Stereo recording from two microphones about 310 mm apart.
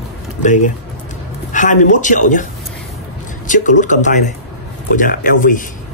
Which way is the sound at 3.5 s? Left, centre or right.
Left.